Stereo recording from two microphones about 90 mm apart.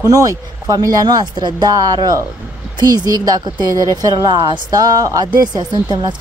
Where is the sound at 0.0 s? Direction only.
40° right (ahead or behind).